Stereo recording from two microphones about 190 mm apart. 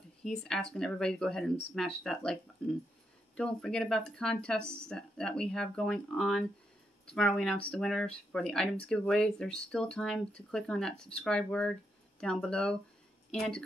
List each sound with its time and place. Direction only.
0.2 s speech: 5° left (ahead or behind)